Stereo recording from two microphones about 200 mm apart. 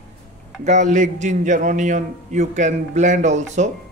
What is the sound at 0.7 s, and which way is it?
A man's voice, 40° right (ahead or behind).